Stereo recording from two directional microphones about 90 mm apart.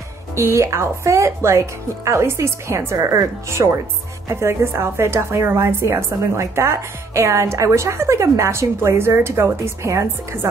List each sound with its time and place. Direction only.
0.4 s a woman's voice: 30° right (ahead or behind)